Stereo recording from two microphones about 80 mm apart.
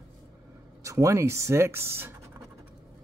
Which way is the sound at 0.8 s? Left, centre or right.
Right.